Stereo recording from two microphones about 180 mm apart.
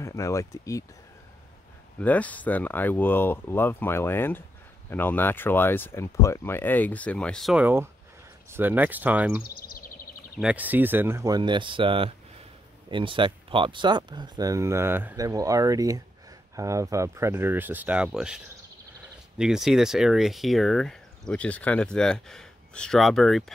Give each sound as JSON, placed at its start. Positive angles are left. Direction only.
{"t": 0.0, "sound": "speech", "side_deg": 15}
{"t": 2.0, "sound": "speech", "side_deg": 10}
{"t": 9.4, "sound": "a sound", "side_deg": 50}
{"t": 10.4, "sound": "speech", "side_deg": -10}